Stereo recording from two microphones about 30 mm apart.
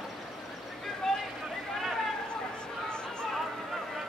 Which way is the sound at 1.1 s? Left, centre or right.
Centre.